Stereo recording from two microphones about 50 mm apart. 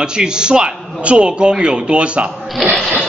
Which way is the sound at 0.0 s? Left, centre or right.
Centre.